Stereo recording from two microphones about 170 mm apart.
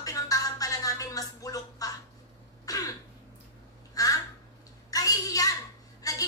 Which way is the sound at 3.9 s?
20° left (ahead or behind).